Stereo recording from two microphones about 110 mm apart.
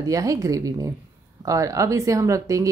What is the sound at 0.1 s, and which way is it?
A woman's voice, 30° right (ahead or behind).